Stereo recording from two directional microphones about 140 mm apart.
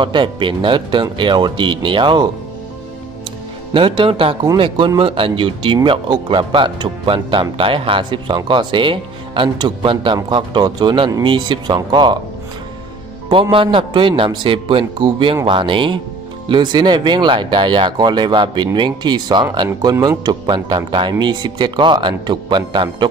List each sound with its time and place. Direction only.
0.0 s speech: 35° right (ahead or behind)
3.7 s speech: 35° right (ahead or behind)
13.3 s speech: 40° right (ahead or behind)